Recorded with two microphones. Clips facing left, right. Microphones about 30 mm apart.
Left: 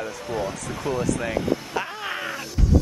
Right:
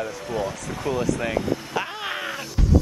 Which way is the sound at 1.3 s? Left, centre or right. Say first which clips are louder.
Even; centre.